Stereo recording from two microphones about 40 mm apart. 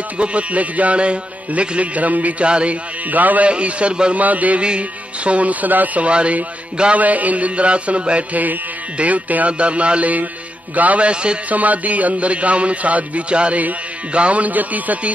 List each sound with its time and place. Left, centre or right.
0.2 s speech: right
3.1 s a man's voice: right
3.4 s a man's voice: right
4.1 s speech: right
4.6 s speech: right
6.0 s speech: right
11.5 s speech: right